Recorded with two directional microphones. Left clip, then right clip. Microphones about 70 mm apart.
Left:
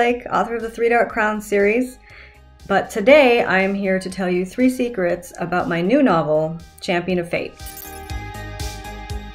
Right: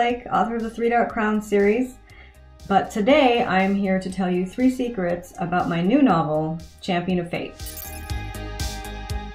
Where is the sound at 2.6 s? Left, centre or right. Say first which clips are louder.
Left 4 dB; left.